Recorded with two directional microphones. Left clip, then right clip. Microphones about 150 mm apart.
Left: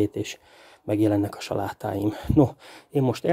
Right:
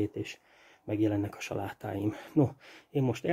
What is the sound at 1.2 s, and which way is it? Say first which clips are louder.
Speech: left 8 dB; 30° left (ahead or behind).